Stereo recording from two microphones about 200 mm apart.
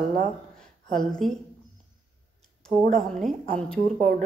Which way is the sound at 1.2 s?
Centre (ahead or behind).